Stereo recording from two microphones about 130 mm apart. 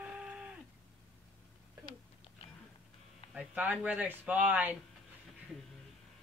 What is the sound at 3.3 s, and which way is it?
Speech, 10° right (ahead or behind).